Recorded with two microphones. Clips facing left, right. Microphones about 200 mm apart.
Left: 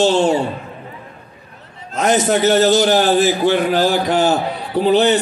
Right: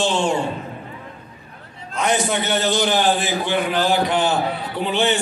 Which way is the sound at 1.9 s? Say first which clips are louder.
Left 5 dB; 40° left (ahead or behind).